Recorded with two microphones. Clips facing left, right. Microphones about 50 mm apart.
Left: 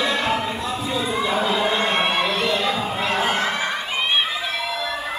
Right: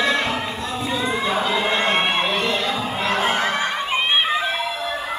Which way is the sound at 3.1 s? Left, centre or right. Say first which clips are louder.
Right 2 dB; centre.